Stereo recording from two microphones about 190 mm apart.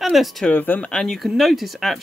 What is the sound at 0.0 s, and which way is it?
Speech, centre (ahead or behind).